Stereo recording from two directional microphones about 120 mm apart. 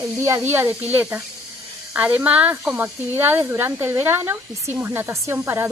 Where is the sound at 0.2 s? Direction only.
20° right (ahead or behind).